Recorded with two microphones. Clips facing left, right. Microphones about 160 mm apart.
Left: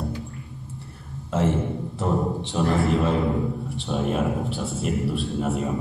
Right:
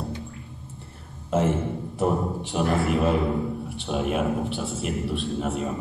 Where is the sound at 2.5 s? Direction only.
20° right (ahead or behind).